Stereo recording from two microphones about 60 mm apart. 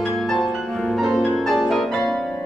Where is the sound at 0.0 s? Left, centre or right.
Centre.